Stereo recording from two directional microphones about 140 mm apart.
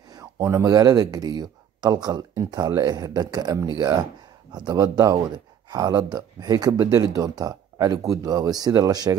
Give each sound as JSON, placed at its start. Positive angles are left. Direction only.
{"t": 0.1, "sound": "speech", "side_deg": -25}